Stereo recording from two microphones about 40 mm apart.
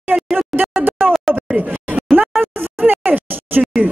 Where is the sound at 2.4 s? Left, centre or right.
Right.